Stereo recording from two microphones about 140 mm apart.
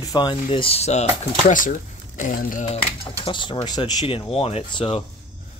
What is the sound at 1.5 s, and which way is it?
Speech, 70° left (ahead or behind).